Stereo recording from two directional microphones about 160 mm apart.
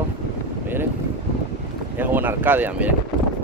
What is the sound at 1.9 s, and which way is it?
Speech, 10° right (ahead or behind).